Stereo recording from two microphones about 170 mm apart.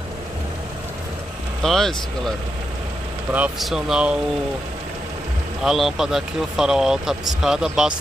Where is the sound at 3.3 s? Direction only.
5° right (ahead or behind).